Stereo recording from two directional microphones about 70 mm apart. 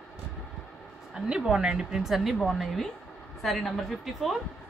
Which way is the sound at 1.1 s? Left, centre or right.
Centre.